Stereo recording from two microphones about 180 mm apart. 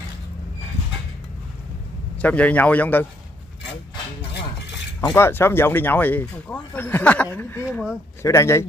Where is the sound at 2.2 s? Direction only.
10° left (ahead or behind).